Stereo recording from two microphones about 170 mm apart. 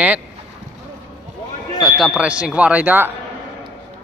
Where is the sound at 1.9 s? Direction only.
Centre (ahead or behind).